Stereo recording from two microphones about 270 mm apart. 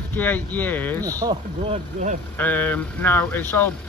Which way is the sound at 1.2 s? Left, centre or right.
Centre.